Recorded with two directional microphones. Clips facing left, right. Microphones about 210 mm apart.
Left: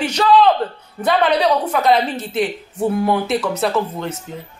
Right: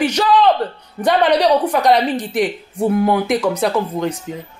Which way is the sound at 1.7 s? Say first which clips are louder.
Right 2 dB; 15° right (ahead or behind).